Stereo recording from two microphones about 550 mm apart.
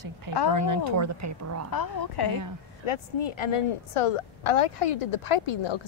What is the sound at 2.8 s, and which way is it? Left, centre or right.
A woman's voice, left.